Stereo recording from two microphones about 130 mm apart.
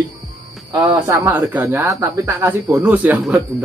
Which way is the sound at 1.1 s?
25° right (ahead or behind).